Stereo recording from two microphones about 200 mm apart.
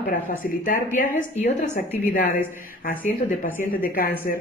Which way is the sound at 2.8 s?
45° left (ahead or behind).